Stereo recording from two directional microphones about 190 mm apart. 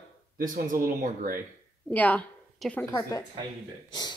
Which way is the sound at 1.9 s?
10° left (ahead or behind).